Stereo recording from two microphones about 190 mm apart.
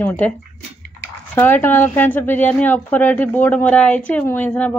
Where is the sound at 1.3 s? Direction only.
10° left (ahead or behind).